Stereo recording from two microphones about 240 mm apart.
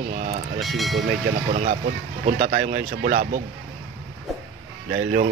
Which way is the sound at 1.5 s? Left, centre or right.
Right.